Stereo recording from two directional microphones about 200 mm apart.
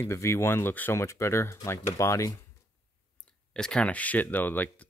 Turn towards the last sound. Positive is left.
turn(degrees=10)  # may be behind; listen again after turning